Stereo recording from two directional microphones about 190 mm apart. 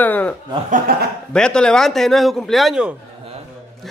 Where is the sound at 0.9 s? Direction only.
50° right (ahead or behind).